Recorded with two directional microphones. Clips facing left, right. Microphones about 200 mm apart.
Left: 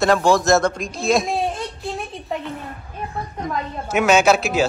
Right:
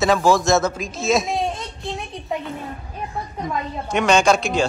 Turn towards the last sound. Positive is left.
turn(degrees=5)  # may be behind; listen again after turning